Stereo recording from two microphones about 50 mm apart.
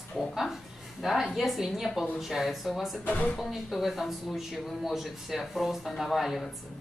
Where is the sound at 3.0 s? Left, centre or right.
Left.